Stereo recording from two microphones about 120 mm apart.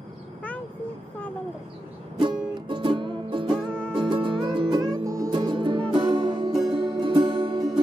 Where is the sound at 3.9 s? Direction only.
45° right (ahead or behind); by 5.3 s 25° right (ahead or behind).